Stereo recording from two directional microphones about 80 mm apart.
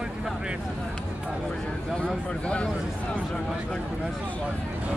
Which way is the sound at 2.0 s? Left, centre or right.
Centre.